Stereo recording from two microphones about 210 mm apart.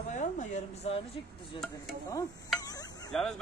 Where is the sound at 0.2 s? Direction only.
35° left (ahead or behind).